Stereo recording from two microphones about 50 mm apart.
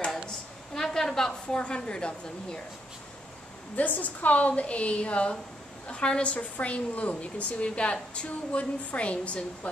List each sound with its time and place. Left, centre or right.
0.7 s a sound: centre
1.6 s a woman's voice: centre
3.7 s a woman's voice: left